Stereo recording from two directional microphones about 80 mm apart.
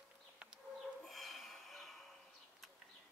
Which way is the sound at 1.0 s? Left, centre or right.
Centre.